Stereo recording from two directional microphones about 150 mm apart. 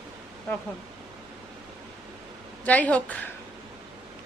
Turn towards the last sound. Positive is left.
turn(degrees=10)  # may be behind; listen again after turning